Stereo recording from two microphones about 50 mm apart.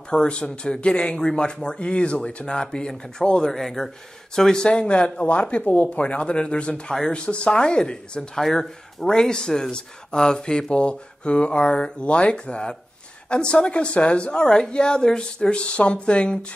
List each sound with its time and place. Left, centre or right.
0.1 s speech: centre
3.6 s speech: centre
8.4 s speech: centre